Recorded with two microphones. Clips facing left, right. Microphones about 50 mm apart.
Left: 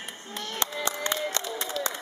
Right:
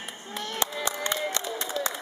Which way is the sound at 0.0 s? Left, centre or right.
Centre.